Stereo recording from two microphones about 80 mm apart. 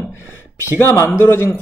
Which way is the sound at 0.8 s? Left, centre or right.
Left.